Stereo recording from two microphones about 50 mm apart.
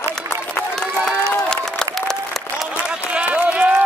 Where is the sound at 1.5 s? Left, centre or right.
Centre.